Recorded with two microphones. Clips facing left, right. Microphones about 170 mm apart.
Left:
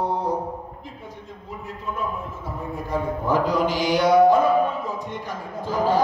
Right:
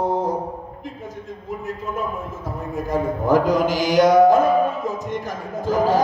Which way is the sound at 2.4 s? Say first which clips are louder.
Right 6 dB; 45° right (ahead or behind).